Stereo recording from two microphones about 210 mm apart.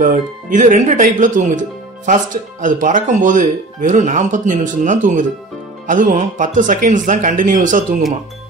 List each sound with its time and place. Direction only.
0.0 s speech: 35° right (ahead or behind)